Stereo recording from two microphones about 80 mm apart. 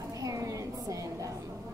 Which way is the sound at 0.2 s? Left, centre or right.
Right.